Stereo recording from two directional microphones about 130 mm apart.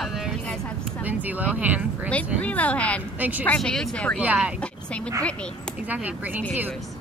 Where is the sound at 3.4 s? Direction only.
5° left (ahead or behind).